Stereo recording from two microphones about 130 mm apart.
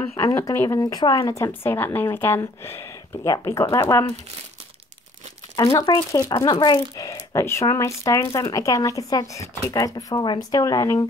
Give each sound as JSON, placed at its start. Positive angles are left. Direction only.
{"t": 0.1, "sound": "speech", "side_deg": 20}
{"t": 5.8, "sound": "speech", "side_deg": 30}